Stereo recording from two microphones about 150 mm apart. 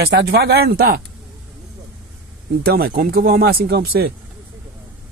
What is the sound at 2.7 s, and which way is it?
Speech, 85° right.